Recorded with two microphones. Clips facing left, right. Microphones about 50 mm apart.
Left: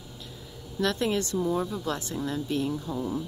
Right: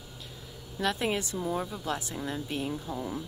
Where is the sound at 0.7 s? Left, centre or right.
Centre.